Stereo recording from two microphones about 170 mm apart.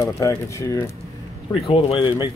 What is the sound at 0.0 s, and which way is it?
Speech, 20° left (ahead or behind).